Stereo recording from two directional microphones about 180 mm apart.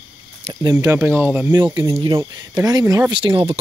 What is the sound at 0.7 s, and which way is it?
Speech, 15° right (ahead or behind).